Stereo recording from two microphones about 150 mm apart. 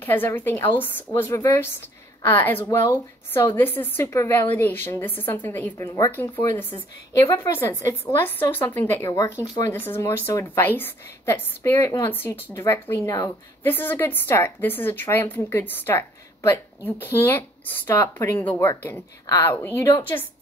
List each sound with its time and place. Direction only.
0.0 s a woman's voice: 15° left (ahead or behind)